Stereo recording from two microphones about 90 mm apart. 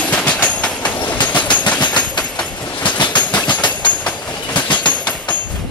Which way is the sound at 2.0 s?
55° left (ahead or behind).